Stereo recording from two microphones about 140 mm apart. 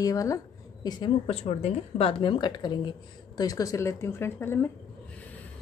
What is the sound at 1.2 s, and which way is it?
A woman's voice, 45° left (ahead or behind).